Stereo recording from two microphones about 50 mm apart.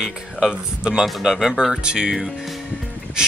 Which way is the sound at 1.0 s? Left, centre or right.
Centre.